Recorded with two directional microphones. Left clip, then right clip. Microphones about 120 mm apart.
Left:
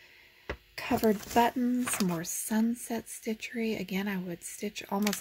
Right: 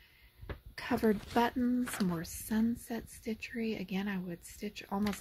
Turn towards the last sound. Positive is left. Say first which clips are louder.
# left 5 dB
turn(degrees=20)  # may be behind; listen again after turning